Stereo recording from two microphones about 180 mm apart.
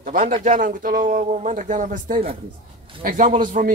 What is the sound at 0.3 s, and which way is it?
A man's voice, 50° right (ahead or behind).